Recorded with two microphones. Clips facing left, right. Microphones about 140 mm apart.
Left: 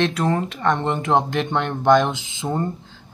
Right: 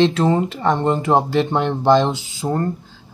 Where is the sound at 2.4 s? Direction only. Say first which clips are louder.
Right 3 dB; centre (ahead or behind).